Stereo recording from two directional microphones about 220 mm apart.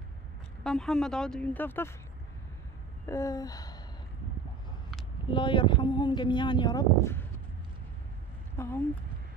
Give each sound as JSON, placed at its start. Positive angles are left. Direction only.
{"t": 0.7, "sound": "speech", "side_deg": 5}
{"t": 3.1, "sound": "gasp", "side_deg": 15}
{"t": 5.3, "sound": "speech", "side_deg": 20}
{"t": 8.5, "sound": "gasp", "side_deg": 10}